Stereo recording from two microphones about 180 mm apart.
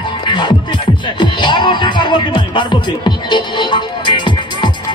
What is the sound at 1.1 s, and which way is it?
Music, 25° left (ahead or behind).